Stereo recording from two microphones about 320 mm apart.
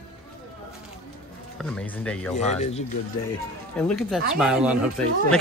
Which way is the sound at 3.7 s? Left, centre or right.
Centre.